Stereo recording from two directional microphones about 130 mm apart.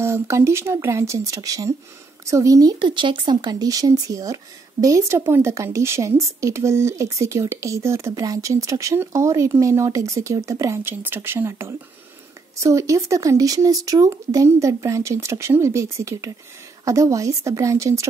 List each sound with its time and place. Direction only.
0.0 s speech: 20° right (ahead or behind)